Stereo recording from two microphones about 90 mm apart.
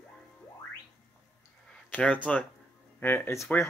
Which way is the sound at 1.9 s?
15° left (ahead or behind).